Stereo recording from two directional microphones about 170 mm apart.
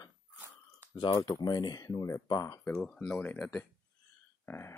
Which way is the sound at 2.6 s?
10° left (ahead or behind).